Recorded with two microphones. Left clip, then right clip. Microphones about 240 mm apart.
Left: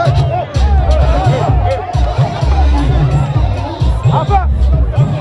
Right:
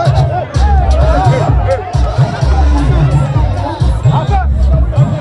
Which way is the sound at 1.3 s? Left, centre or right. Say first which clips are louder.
Right 1 dB; centre.